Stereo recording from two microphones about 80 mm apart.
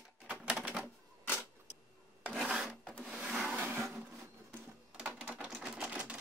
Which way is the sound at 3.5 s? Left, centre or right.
Right.